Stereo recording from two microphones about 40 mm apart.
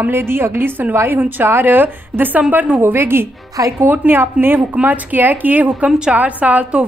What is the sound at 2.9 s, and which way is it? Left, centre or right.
Speech, right.